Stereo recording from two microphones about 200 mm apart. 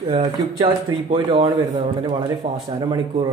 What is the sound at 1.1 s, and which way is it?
A woman's voice, 25° right (ahead or behind).